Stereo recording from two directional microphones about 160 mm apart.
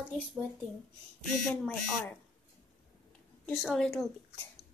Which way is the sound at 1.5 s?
5° left (ahead or behind).